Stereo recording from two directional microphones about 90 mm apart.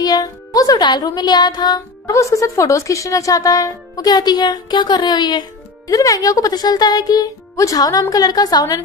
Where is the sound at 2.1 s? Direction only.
35° left (ahead or behind); by 5.4 s 55° left (ahead or behind).